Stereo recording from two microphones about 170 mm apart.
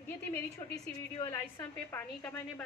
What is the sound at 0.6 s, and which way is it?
Speech, 25° left (ahead or behind).